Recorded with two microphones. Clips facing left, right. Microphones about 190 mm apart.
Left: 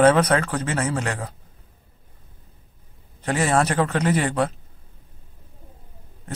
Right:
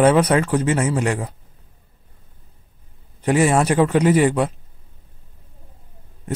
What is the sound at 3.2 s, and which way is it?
Speech, 15° right (ahead or behind).